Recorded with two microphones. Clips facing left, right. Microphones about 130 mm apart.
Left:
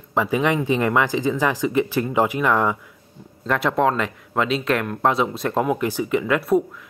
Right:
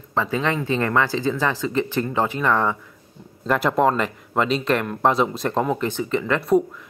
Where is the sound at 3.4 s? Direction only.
Centre (ahead or behind).